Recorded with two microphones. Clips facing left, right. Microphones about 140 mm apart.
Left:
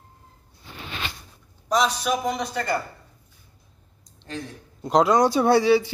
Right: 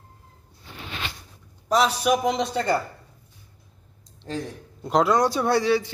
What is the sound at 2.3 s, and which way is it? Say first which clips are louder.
Speech: right 3 dB; 25° right (ahead or behind).